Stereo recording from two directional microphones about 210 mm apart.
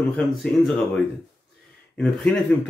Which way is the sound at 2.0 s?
5° left (ahead or behind).